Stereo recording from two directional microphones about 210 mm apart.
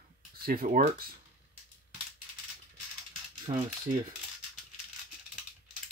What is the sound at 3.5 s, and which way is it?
Cutlery, 25° right (ahead or behind).